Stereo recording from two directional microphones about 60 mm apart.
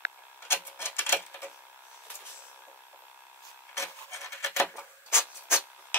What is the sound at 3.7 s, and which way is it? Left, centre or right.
Rub, left.